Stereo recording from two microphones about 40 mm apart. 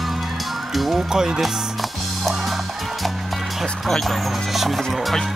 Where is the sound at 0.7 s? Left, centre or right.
Centre.